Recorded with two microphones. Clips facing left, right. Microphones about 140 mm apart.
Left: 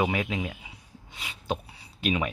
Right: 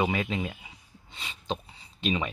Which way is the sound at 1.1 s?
10° left (ahead or behind).